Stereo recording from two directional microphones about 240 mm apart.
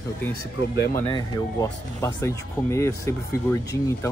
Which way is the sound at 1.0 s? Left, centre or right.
Centre.